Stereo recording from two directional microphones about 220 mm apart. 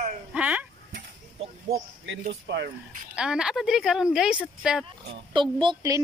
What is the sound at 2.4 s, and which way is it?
Speech, 50° right (ahead or behind).